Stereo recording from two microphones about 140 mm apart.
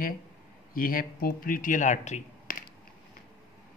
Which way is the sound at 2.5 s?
75° left (ahead or behind).